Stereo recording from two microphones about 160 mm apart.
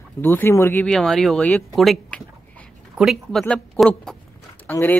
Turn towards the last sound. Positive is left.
turn(degrees=10)  # may be behind; listen again after turning